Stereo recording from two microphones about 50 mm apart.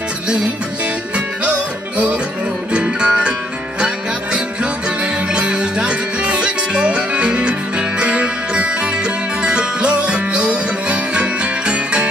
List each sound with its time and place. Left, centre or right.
2.7 s music: centre
5.3 s music: centre